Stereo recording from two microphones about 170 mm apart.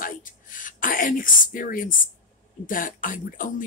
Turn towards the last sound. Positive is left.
turn(degrees=50)  # may be behind; listen again after turning